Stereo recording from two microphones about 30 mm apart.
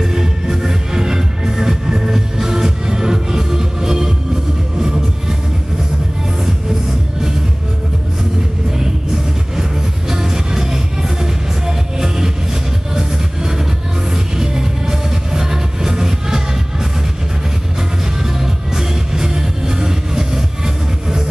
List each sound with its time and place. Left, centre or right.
0.0 s music: centre
9.6 s music: centre
18.2 s music: centre